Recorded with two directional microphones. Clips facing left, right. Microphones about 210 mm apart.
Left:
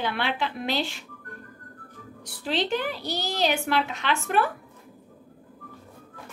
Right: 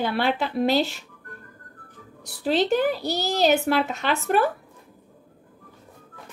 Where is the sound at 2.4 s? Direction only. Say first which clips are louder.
Right 6 dB; 40° right (ahead or behind).